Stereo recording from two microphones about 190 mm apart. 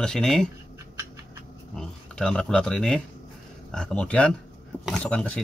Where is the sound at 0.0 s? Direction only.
5° left (ahead or behind).